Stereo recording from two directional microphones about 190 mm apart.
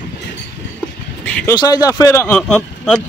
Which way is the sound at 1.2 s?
5° left (ahead or behind).